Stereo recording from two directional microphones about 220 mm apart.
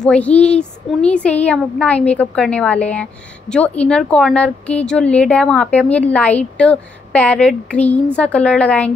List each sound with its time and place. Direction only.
0.0 s speech: 5° left (ahead or behind)